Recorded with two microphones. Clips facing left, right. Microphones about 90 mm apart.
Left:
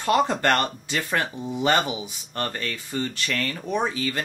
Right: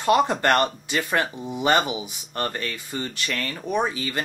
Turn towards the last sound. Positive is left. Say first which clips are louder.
# right 1 dB
turn(degrees=-15)  # may be behind; listen again after turning